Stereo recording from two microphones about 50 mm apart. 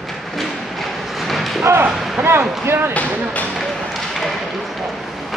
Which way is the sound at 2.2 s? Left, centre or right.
Right.